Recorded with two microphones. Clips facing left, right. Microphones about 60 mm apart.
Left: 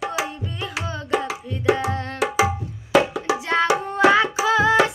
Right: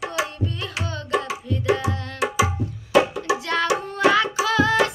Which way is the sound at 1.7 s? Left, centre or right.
Left.